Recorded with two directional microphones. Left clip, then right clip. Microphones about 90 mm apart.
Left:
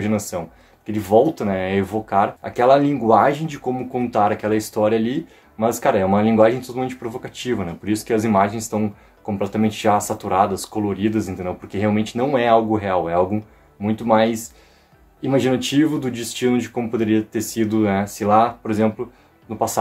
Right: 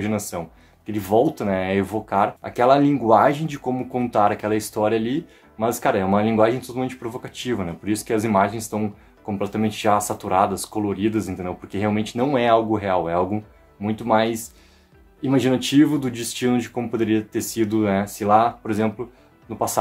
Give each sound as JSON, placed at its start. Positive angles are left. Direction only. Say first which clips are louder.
{"t": 0.0, "sound": "speech", "louder": "left 3 dB", "side_deg": -35}